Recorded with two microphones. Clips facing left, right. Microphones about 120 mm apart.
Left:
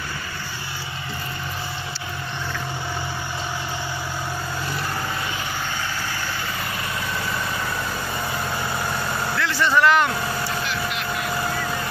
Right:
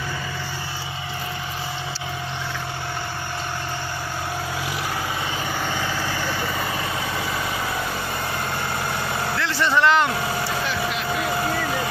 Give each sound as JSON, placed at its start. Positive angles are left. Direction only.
{"t": 9.4, "sound": "vehicle", "side_deg": -25}